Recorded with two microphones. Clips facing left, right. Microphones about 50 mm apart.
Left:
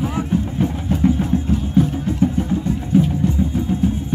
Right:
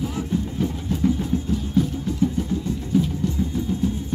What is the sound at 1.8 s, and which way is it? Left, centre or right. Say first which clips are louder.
Music: left 5 dB; left.